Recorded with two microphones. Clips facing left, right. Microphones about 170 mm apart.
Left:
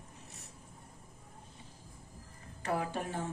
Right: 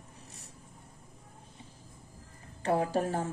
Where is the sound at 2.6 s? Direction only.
35° right (ahead or behind).